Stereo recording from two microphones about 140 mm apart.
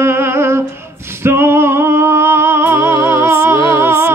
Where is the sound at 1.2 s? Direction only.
15° right (ahead or behind).